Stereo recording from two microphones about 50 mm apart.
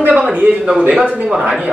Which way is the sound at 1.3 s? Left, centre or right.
Centre.